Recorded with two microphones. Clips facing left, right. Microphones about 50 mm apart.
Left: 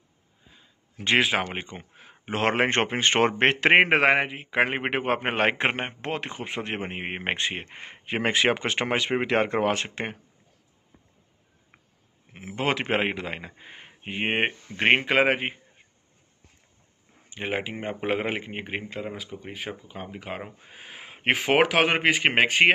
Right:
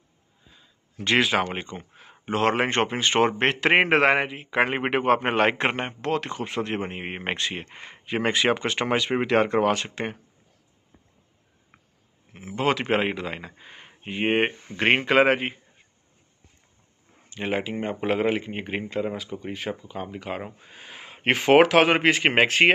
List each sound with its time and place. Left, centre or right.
0.5 s a sound: left
2.3 s a man's voice: left
12.4 s speech: left
17.3 s speech: centre